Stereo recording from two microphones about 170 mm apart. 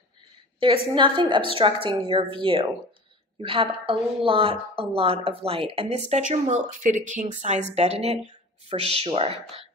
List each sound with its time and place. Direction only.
0.9 s a woman's voice: 30° right (ahead or behind)